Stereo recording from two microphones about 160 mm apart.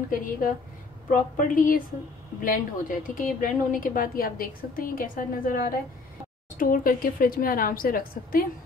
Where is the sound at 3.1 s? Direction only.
60° left (ahead or behind).